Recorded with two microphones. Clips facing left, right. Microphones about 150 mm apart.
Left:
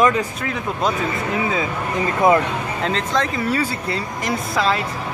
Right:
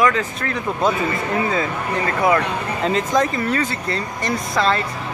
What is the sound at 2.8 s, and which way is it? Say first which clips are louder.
Speech: right 4 dB; 5° right (ahead or behind).